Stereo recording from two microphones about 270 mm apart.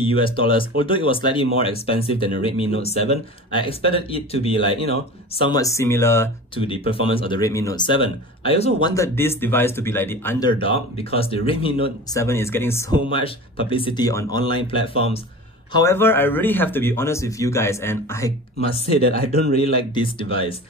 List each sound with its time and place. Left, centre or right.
0.0 s speech: centre
6.5 s speech: centre
8.8 s speech: centre
10.6 s speech: left
19.5 s speech: left